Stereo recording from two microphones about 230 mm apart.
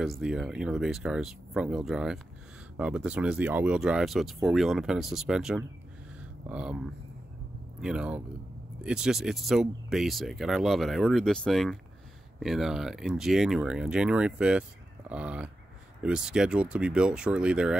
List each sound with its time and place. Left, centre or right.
0.0 s speech: centre
7.8 s speech: centre